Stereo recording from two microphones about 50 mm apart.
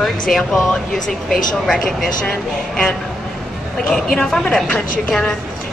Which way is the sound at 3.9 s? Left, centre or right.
Centre.